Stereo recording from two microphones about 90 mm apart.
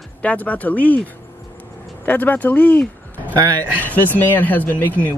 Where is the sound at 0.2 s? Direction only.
15° left (ahead or behind).